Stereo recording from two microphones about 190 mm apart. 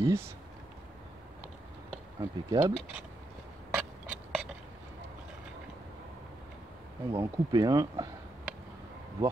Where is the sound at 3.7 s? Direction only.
5° right (ahead or behind).